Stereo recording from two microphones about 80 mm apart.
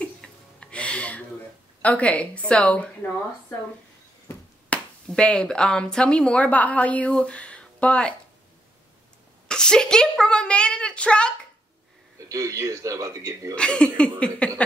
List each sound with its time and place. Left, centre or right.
0.0 s music: centre
1.8 s a woman's voice: centre
4.6 s speech: centre
9.5 s a woman's voice: centre
12.3 s a man's voice: right
13.6 s a woman's voice: centre
14.4 s a sound: centre